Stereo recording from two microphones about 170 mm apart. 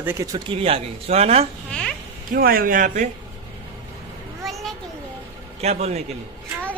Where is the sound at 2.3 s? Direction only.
60° right (ahead or behind).